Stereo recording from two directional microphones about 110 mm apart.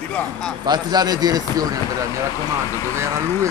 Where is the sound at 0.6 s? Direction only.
40° right (ahead or behind).